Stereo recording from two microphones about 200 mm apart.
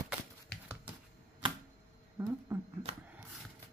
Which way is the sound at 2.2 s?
15° right (ahead or behind).